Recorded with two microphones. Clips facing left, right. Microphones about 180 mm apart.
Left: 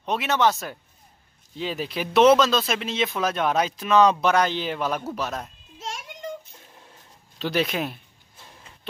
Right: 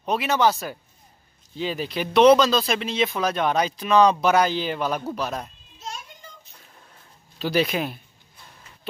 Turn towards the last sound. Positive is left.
turn(degrees=0)  # may be behind; listen again after turning